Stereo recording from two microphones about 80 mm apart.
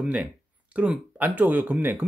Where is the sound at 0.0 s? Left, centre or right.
Centre.